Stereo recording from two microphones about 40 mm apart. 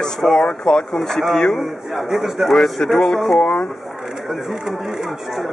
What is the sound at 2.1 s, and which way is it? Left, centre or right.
Speech, centre.